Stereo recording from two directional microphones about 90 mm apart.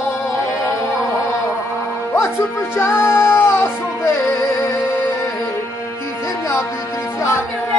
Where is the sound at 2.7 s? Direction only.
30° left (ahead or behind).